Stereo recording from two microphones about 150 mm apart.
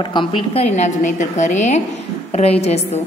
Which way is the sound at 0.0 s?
35° left (ahead or behind).